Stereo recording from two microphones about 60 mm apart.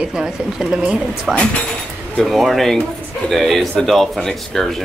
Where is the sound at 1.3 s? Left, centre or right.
Centre.